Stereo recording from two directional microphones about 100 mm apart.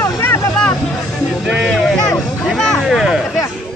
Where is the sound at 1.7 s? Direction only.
5° left (ahead or behind).